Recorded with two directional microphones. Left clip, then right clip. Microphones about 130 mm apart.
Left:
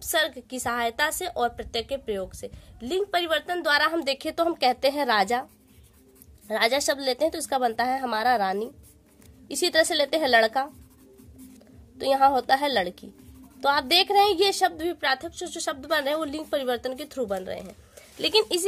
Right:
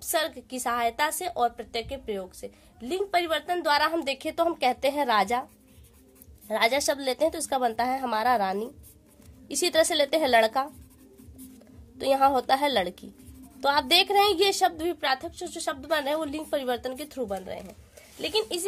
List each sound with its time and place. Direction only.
0.0 s a woman's voice: 20° left (ahead or behind)
12.0 s a woman's voice: 10° left (ahead or behind)
17.3 s speech: 35° left (ahead or behind)